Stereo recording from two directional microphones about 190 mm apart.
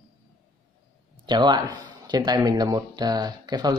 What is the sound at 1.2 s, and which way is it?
A man's voice, 20° right (ahead or behind).